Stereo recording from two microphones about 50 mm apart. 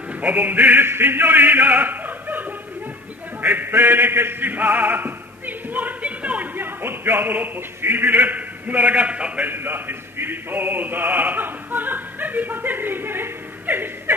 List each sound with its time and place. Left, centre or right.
0.2 s music: right
6.5 s speech: right
9.5 s a man's voice: right